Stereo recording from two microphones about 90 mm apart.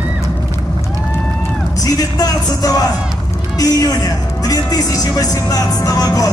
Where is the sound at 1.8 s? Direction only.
45° left (ahead or behind).